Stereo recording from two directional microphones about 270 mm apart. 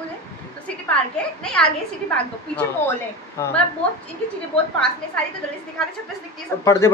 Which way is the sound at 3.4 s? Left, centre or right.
Centre.